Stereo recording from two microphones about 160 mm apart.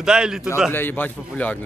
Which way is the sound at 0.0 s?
5° right (ahead or behind).